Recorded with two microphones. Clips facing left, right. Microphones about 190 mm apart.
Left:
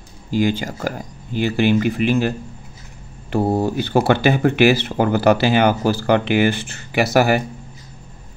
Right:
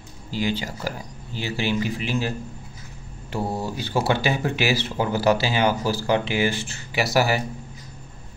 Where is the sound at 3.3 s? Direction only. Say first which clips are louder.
Left 9 dB; 55° left (ahead or behind).